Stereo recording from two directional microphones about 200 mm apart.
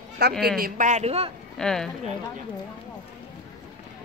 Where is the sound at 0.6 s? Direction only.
45° right (ahead or behind).